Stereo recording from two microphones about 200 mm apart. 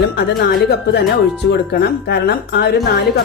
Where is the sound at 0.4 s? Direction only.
55° left (ahead or behind).